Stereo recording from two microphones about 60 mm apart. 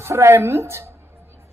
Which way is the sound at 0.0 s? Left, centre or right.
Right.